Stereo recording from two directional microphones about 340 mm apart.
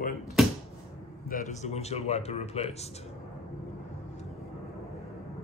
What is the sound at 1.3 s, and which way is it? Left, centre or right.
A man's voice, centre.